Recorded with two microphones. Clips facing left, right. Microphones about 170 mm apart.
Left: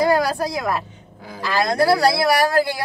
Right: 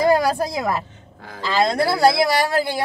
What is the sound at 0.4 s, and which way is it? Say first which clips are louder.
Speech: even; 25° right (ahead or behind).